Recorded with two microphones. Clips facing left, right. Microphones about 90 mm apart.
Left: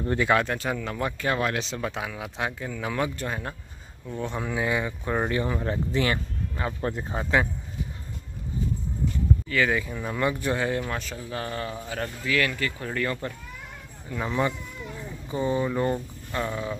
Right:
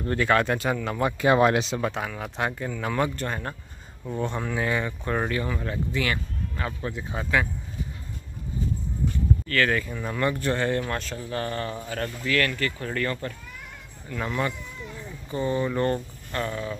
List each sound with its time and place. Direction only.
0.0 s speech: 15° left (ahead or behind)
0.4 s speech: centre (ahead or behind)
1.2 s speech: 20° right (ahead or behind)
1.7 s speech: centre (ahead or behind)
5.3 s speech: 25° left (ahead or behind)
7.2 s speech: 20° left (ahead or behind)
9.5 s speech: 10° left (ahead or behind)